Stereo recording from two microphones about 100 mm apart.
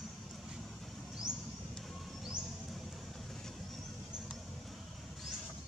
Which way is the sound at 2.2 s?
5° right (ahead or behind).